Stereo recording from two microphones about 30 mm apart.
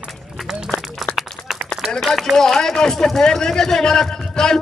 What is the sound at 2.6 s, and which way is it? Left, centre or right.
A man's voice, centre.